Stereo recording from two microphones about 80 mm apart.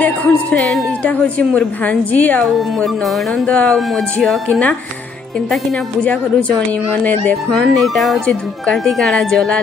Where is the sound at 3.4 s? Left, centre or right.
Centre.